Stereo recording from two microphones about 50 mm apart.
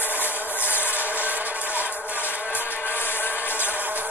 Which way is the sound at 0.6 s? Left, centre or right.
Left.